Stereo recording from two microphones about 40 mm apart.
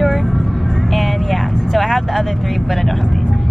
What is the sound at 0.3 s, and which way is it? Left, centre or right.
Vehicle, centre.